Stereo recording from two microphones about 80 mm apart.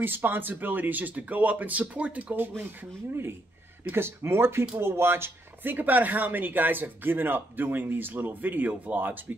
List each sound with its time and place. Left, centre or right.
0.0 s speech: right